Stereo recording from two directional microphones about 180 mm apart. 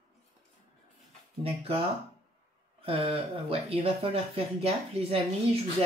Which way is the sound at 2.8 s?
30° right (ahead or behind).